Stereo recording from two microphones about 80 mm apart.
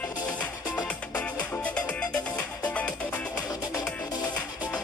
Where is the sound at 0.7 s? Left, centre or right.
Centre.